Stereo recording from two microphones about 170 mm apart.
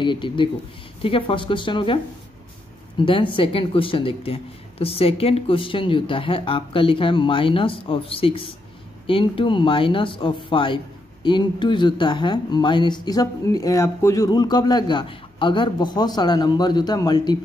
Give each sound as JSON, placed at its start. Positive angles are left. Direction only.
{"t": 0.0, "sound": "speech", "side_deg": 30}
{"t": 3.0, "sound": "speech", "side_deg": 30}